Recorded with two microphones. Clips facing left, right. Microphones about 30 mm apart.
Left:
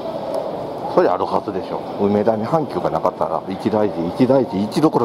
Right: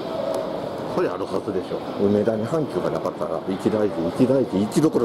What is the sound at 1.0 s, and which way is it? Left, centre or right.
Speech, left.